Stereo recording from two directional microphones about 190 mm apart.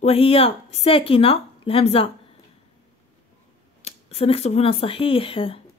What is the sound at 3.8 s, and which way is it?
A woman's voice, 30° left (ahead or behind).